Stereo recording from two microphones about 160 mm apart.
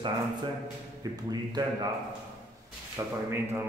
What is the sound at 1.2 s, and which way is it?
Speech, 25° right (ahead or behind).